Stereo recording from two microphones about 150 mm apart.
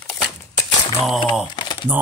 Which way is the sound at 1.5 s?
30° left (ahead or behind).